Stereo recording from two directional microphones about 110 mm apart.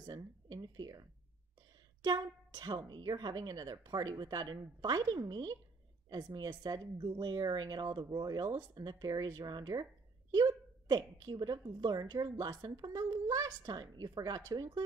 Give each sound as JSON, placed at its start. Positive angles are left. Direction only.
{"t": 0.0, "sound": "a woman's voice", "side_deg": -40}
{"t": 2.0, "sound": "a woman's voice", "side_deg": -40}